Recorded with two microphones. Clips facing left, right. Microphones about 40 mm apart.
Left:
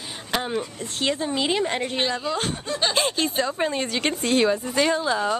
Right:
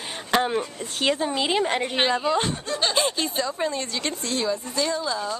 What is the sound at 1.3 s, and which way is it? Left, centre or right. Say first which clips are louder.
Speech: even; centre.